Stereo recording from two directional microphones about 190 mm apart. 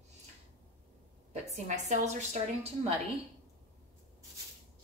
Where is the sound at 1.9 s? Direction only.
35° right (ahead or behind).